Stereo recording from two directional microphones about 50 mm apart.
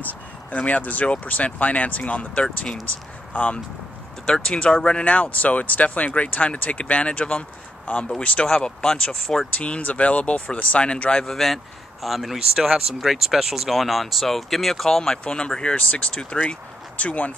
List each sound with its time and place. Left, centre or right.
0.0 s speech: left
8.5 s speech: centre
9.2 s speech: centre
9.6 s speech: left
11.2 s speech: centre
15.2 s speech: centre